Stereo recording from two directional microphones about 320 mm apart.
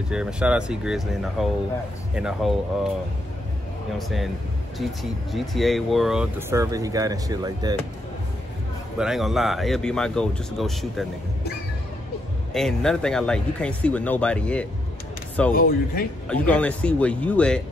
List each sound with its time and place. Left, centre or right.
0.1 s speech: centre
5.3 s speech: centre
8.9 s speech: centre
12.5 s speech: centre
15.5 s a man's voice: left
16.3 s speech: centre